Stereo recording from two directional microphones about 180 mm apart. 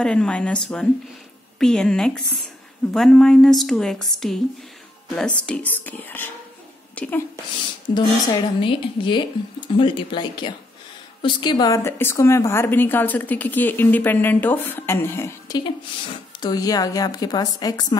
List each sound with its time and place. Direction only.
0.0 s a woman's voice: 5° left (ahead or behind)
5.5 s a woman's voice: 10° left (ahead or behind)
7.9 s a woman's voice: 25° left (ahead or behind)